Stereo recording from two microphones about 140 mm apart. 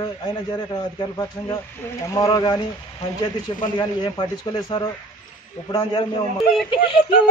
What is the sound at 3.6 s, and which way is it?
Speech, 35° left (ahead or behind).